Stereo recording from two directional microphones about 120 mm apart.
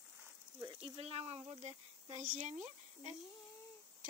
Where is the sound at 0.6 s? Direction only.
45° right (ahead or behind); by 3.1 s 80° right.